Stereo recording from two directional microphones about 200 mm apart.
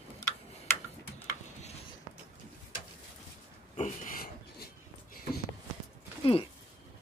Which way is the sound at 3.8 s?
40° left (ahead or behind).